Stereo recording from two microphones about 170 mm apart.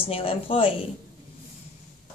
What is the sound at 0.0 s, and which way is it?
Speech, 35° left (ahead or behind).